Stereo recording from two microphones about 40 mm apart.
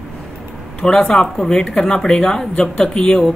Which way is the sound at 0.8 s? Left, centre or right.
Centre.